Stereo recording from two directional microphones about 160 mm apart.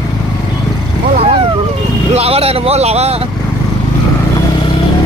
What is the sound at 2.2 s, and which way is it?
Speech, 40° right (ahead or behind).